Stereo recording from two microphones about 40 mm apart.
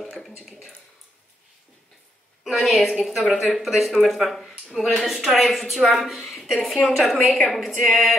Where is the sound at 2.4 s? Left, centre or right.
Centre.